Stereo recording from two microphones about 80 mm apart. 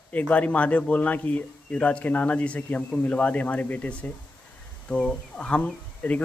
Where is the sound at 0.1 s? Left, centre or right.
Centre.